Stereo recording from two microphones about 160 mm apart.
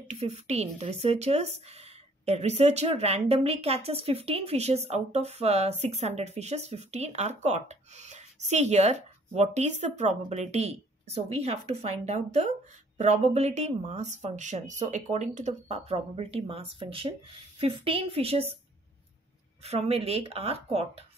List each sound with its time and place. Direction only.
0.1 s speech: 45° right (ahead or behind)
19.6 s speech: 40° right (ahead or behind)